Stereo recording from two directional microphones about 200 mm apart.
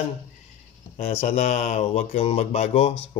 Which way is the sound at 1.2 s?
35° left (ahead or behind).